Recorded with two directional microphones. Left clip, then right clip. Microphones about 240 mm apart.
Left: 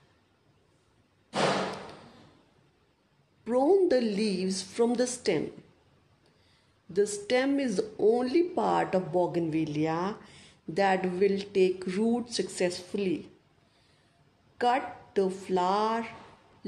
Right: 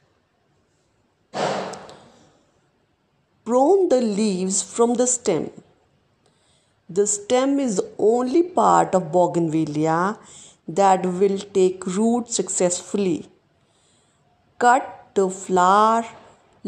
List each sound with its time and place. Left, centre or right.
3.4 s speech: right
6.9 s speech: right
14.6 s speech: right